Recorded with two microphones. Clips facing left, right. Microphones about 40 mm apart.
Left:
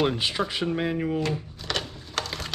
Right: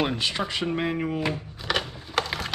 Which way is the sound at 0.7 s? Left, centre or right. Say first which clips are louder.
Even; centre.